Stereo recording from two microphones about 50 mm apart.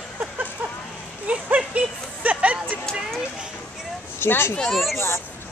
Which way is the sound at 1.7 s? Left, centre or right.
Right.